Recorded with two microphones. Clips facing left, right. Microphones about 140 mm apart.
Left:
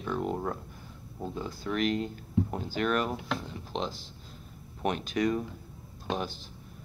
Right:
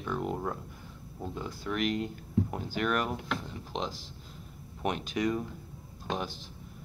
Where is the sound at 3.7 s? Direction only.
15° right (ahead or behind).